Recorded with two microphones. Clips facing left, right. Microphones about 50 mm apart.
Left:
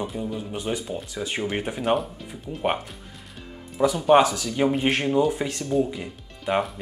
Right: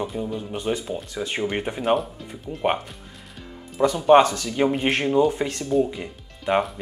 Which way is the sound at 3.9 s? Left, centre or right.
Centre.